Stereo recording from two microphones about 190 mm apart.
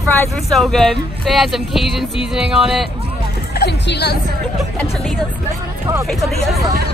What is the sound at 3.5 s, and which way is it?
Speech, 60° left (ahead or behind).